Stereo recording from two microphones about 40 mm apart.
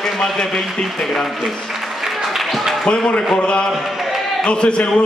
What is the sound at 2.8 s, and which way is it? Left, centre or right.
A man's voice, centre.